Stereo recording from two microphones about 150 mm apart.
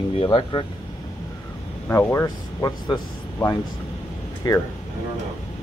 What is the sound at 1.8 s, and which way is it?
Speech, 20° left (ahead or behind).